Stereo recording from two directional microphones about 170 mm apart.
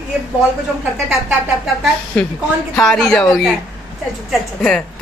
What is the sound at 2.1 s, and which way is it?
A woman's voice, 5° left (ahead or behind).